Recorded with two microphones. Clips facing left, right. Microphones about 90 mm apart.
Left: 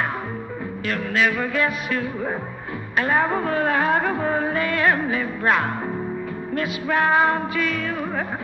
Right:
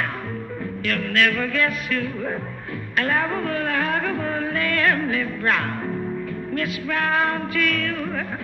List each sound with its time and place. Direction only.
0.8 s music: 15° left (ahead or behind)